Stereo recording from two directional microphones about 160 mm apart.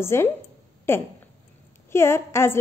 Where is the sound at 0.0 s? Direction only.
15° left (ahead or behind).